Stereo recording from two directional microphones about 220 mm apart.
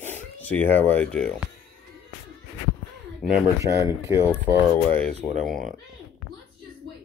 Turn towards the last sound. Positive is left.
turn(degrees=0)  # may be behind; listen again after turning